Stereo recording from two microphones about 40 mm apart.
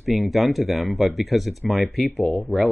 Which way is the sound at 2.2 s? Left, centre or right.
Left.